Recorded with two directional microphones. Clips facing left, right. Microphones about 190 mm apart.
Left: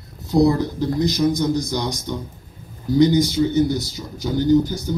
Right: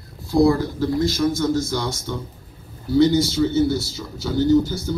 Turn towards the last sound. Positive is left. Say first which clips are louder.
# even
turn(degrees=15)  # may be behind; listen again after turning